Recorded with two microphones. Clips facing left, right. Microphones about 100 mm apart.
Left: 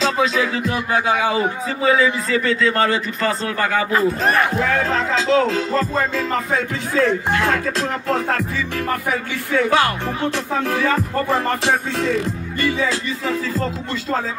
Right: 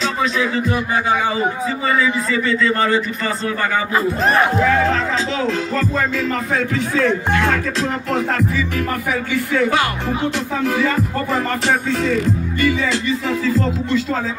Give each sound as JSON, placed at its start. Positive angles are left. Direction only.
{"t": 2.4, "sound": "speech", "side_deg": 65}
{"t": 6.5, "sound": "speech", "side_deg": 30}